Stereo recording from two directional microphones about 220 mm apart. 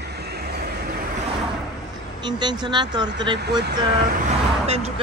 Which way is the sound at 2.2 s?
20° right (ahead or behind).